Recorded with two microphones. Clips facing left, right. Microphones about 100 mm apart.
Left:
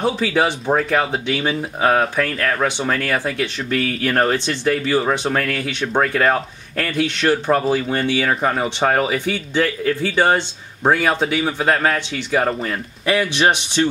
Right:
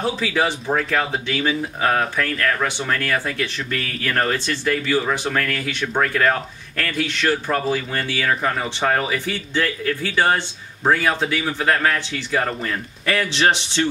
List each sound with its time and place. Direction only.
0.0 s speech: 20° left (ahead or behind)